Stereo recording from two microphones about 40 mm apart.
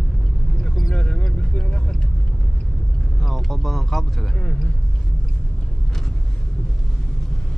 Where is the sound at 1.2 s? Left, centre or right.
Left.